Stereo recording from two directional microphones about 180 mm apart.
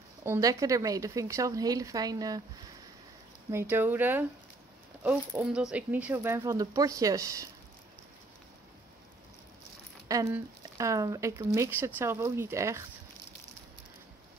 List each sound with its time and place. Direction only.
0.2 s speech: 15° right (ahead or behind)
3.5 s speech: 10° right (ahead or behind)
10.0 s speech: 15° right (ahead or behind)